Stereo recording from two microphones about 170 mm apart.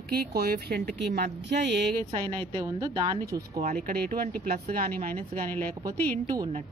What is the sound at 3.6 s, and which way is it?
Speech, 40° right (ahead or behind).